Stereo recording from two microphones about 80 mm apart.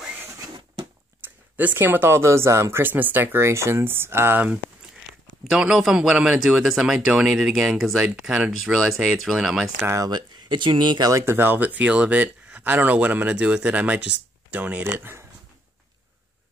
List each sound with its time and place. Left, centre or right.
1.2 s speech: right
2.8 s speech: right
5.4 s speech: centre
9.8 s speech: right
10.1 s speech: right
11.1 s speech: right